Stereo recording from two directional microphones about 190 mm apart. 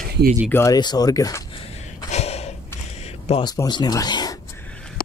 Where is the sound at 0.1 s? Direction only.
50° right (ahead or behind).